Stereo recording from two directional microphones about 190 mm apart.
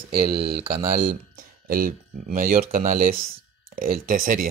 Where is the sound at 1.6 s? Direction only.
50° right (ahead or behind).